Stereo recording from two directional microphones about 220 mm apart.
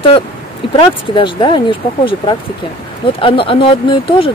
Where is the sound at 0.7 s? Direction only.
20° left (ahead or behind).